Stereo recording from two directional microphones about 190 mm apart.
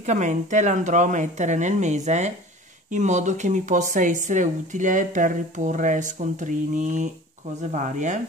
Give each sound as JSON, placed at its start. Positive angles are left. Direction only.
{"t": 0.0, "sound": "speech", "side_deg": -40}